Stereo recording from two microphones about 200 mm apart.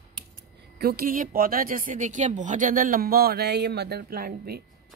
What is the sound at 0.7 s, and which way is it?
Speech, 50° right (ahead or behind).